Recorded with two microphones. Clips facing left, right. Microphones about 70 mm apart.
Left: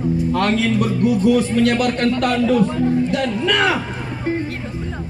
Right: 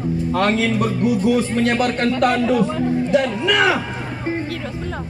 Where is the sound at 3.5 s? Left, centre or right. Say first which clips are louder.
Right 1 dB; centre.